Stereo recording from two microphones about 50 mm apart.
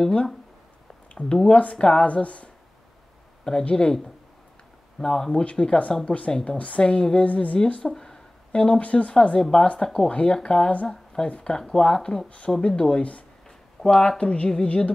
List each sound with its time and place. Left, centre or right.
0.0 s speech: centre
1.5 s a woman's voice: left
3.6 s a woman's voice: left
4.9 s speech: centre
5.4 s a woman's voice: left
6.3 s a woman's voice: centre